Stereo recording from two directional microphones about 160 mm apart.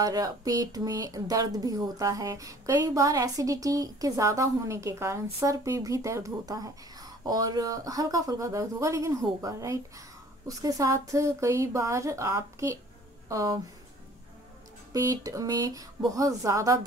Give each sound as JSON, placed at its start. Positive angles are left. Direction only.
{"t": 0.0, "sound": "speech", "side_deg": -25}
{"t": 14.9, "sound": "speech", "side_deg": -20}